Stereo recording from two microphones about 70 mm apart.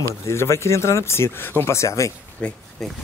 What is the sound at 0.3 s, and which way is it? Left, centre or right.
Speech, left.